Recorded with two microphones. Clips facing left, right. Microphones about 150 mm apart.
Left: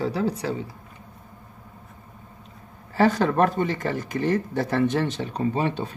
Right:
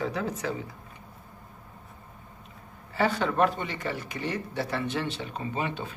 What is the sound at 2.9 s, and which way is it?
Speech, 45° left (ahead or behind).